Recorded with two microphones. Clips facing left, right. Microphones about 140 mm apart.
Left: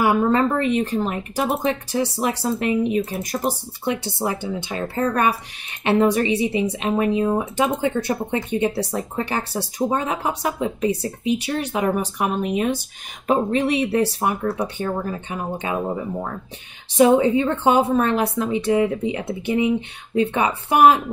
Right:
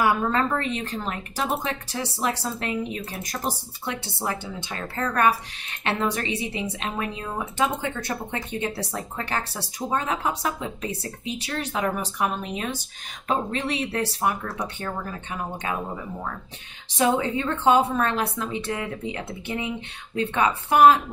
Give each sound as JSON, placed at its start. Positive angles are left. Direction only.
{"t": 0.0, "sound": "speech", "side_deg": 15}